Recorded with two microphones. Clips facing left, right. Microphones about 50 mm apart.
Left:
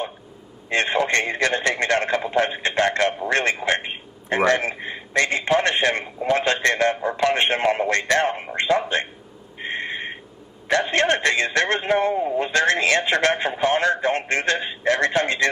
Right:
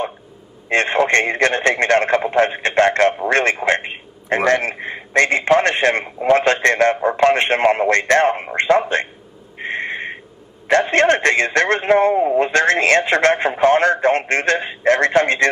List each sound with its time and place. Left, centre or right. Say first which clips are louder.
0.7 s a man's voice: right 5 dB; right
9.6 s a sound: right 4 dB; right
10.7 s a man's voice: right 5 dB; right